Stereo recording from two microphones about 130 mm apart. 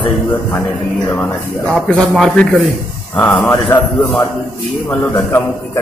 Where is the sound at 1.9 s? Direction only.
5° left (ahead or behind).